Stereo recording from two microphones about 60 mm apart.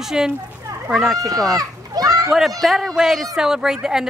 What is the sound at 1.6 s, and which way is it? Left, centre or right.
Children playing, right.